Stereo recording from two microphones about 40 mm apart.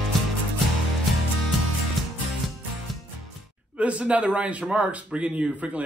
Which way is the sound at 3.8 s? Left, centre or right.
Right.